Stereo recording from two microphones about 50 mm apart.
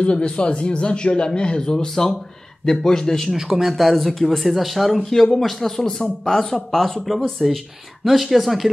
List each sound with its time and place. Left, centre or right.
0.0 s speech: centre
3.3 s speech: centre